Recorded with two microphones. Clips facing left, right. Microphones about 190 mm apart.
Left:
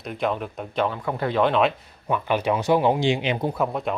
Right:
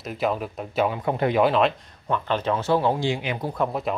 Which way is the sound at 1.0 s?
20° right (ahead or behind).